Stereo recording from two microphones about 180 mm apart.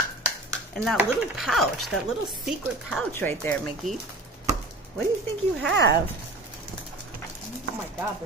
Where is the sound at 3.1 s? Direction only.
10° left (ahead or behind).